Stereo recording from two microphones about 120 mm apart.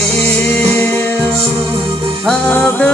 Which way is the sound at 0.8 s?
15° left (ahead or behind).